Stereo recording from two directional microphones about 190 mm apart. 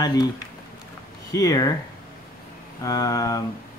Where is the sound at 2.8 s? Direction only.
20° left (ahead or behind).